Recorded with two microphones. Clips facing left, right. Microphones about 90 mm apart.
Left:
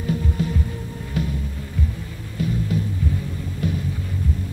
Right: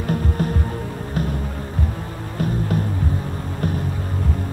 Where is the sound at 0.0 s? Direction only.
55° right (ahead or behind).